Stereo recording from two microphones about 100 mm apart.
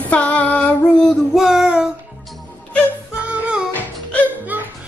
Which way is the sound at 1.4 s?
5° right (ahead or behind).